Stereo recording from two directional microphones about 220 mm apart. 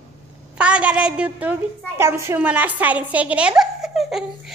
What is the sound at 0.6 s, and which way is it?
A woman's voice, 5° right (ahead or behind).